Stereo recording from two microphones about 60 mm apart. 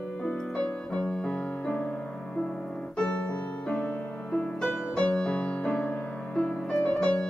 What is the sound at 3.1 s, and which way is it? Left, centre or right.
Music, centre.